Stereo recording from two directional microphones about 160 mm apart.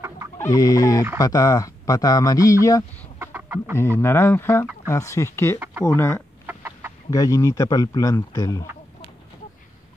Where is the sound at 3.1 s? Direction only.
15° right (ahead or behind).